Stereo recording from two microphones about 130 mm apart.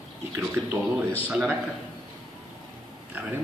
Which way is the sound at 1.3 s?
5° right (ahead or behind).